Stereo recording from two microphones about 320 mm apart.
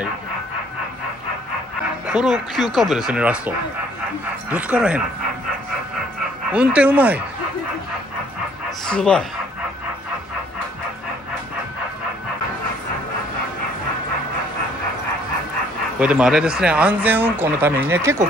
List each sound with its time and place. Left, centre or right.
2.1 s speech: centre
6.5 s speech: centre
8.8 s speech: centre
16.0 s speech: centre